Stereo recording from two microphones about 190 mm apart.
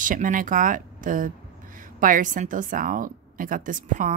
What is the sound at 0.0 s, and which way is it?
Speech, 45° right (ahead or behind).